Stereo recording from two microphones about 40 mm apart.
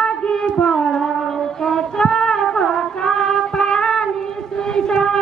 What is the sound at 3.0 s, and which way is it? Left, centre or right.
Music, centre.